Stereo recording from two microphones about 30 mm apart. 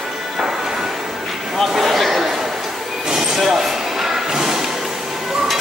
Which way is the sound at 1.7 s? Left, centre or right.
Centre.